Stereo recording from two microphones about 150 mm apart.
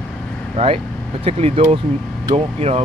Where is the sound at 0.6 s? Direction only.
40° right (ahead or behind).